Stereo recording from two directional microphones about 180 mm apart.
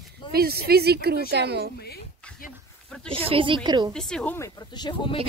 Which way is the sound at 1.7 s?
60° left (ahead or behind).